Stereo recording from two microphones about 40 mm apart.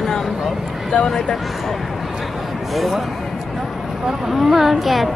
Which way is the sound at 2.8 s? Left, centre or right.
Centre.